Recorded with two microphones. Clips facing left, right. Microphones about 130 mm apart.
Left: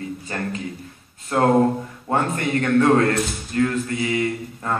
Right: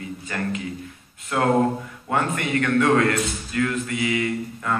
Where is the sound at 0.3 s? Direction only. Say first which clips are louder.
Right 2 dB; 35° left (ahead or behind).